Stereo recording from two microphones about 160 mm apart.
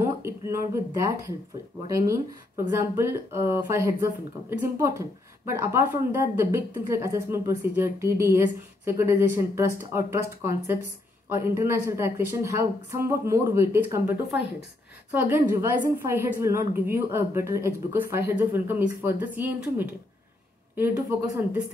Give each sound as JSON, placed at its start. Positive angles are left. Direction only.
{"t": 0.0, "sound": "speech", "side_deg": -15}
{"t": 15.0, "sound": "speech", "side_deg": -10}